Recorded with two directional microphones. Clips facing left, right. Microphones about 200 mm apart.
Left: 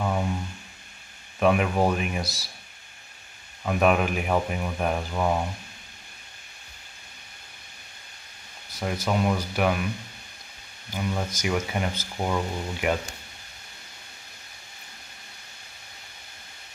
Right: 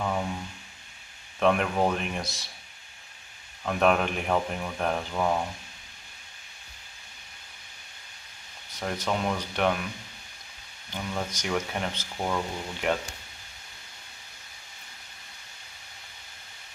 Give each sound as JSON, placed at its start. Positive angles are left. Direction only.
{"t": 1.4, "sound": "speech", "side_deg": 5}
{"t": 2.2, "sound": "speech", "side_deg": 35}
{"t": 3.6, "sound": "speech", "side_deg": 5}
{"t": 8.7, "sound": "speech", "side_deg": 5}
{"t": 10.9, "sound": "speech", "side_deg": 10}